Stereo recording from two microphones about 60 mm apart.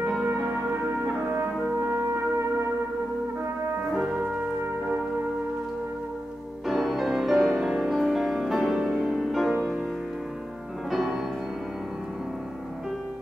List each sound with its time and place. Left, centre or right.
0.6 s music: centre
1.0 s brass instrument: right
3.9 s music: centre
6.7 s music: centre
10.9 s music: centre